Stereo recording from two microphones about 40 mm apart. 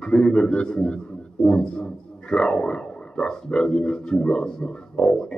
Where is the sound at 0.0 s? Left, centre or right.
Left.